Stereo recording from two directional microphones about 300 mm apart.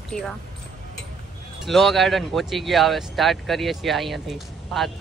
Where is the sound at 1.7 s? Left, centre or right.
Centre.